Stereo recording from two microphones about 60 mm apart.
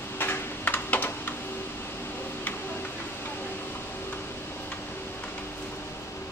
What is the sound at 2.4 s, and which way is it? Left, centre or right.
Tick-tock, left.